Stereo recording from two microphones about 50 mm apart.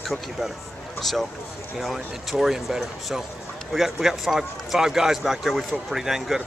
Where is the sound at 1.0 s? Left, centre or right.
Centre.